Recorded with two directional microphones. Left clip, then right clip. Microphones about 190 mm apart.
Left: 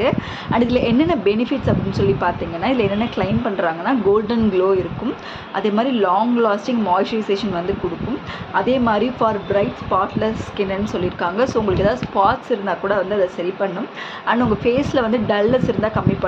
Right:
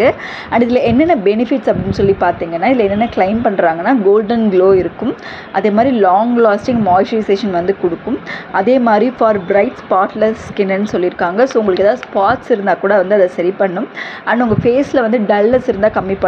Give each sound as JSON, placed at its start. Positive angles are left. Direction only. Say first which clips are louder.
{"t": 0.0, "sound": "speech", "louder": "right 7 dB", "side_deg": -25}